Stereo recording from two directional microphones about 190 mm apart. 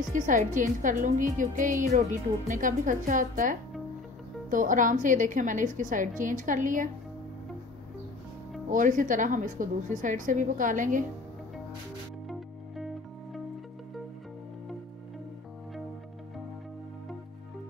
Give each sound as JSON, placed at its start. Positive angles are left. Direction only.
{"t": 0.1, "sound": "a woman's voice", "side_deg": -40}
{"t": 8.6, "sound": "a woman's voice", "side_deg": -45}
{"t": 12.3, "sound": "music", "side_deg": 0}